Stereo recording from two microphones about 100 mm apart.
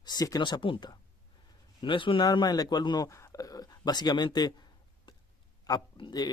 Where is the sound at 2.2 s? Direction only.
40° left (ahead or behind).